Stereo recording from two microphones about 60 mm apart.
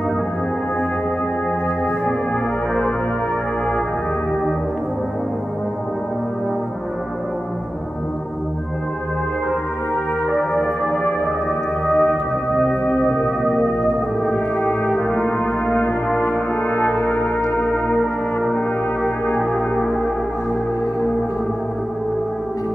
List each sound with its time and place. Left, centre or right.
10.3 s music: left
14.2 s brass instrument: left
17.5 s music: left
19.3 s music: left